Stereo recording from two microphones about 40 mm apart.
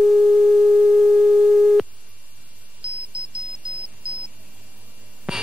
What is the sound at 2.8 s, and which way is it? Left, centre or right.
Music, right.